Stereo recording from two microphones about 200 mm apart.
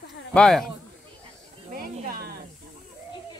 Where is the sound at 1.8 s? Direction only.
50° right (ahead or behind).